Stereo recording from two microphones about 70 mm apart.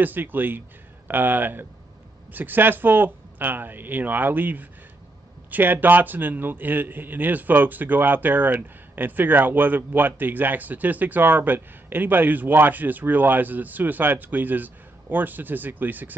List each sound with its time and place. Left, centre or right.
0.0 s a man's voice: right